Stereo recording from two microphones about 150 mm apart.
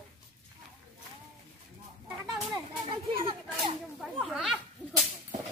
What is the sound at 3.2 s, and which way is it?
Children playing, 35° right (ahead or behind).